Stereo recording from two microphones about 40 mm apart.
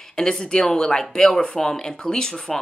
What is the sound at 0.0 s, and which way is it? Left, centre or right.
Speech, centre.